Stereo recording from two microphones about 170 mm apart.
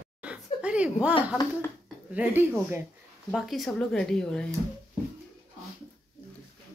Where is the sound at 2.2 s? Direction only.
10° right (ahead or behind).